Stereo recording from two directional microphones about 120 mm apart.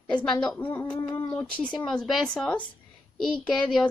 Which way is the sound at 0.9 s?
45° left (ahead or behind).